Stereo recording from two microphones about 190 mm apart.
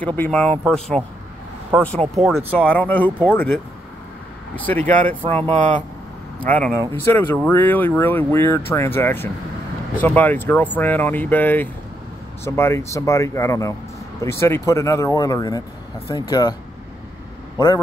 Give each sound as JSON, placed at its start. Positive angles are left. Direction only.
{"t": 0.0, "sound": "speech", "side_deg": 10}
{"t": 2.1, "sound": "speech", "side_deg": 0}
{"t": 6.4, "sound": "speech", "side_deg": 5}